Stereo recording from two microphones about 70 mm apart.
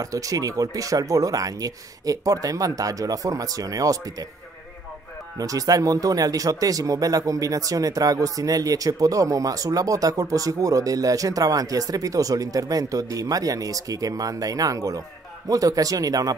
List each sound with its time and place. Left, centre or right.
0.0 s speech: right
5.4 s speech: right